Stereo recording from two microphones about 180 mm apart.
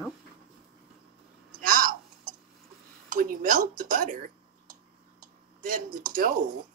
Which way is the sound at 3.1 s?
50° right (ahead or behind).